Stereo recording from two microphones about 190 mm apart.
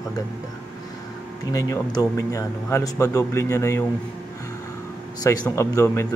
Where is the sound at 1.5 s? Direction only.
15° left (ahead or behind).